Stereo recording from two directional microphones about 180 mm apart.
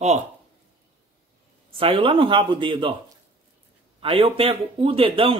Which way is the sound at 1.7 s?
30° right (ahead or behind).